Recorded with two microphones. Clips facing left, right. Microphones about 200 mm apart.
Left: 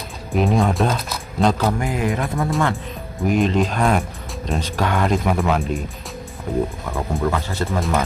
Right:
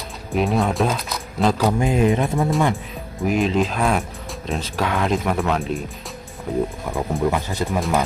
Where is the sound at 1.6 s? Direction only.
20° right (ahead or behind).